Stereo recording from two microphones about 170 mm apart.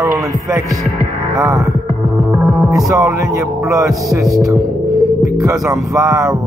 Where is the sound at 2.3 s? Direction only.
20° right (ahead or behind).